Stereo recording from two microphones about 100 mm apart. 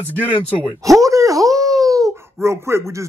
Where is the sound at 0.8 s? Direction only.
35° right (ahead or behind).